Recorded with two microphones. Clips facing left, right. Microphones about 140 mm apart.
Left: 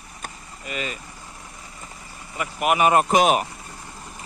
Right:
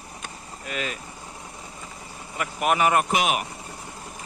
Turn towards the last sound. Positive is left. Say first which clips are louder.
# left 6 dB
turn(degrees=40)  # may be behind; listen again after turning